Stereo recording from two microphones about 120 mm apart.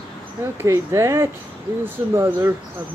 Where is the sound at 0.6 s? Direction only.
25° right (ahead or behind).